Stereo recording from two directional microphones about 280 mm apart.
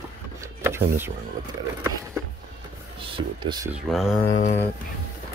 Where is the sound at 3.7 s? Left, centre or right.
Centre.